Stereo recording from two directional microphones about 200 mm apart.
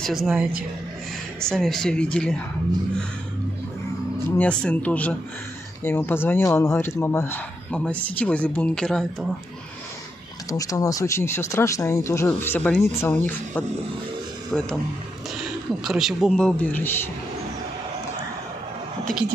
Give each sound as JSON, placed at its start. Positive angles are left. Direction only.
{"t": 0.0, "sound": "speech", "side_deg": 0}
{"t": 1.5, "sound": "speech", "side_deg": 0}
{"t": 4.4, "sound": "speech", "side_deg": 5}
{"t": 10.5, "sound": "speech", "side_deg": 15}
{"t": 15.8, "sound": "speech", "side_deg": 0}